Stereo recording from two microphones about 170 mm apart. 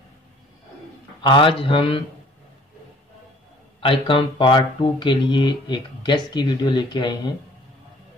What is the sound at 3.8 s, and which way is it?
A man's voice, 30° left (ahead or behind).